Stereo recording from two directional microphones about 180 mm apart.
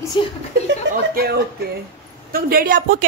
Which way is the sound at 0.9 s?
75° right (ahead or behind).